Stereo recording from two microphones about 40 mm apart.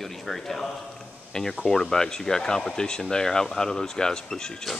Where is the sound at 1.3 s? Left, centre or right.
Centre.